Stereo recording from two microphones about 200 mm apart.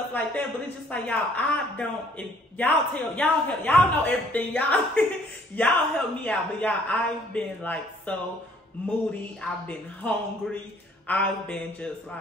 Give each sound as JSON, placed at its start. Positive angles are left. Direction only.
{"t": 0.1, "sound": "a man's voice", "side_deg": 5}
{"t": 9.4, "sound": "a man's voice", "side_deg": 5}